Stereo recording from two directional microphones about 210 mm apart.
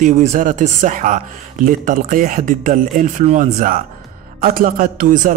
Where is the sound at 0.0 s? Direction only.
35° right (ahead or behind).